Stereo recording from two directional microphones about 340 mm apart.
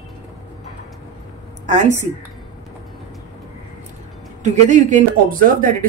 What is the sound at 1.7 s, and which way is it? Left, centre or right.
Speech, right.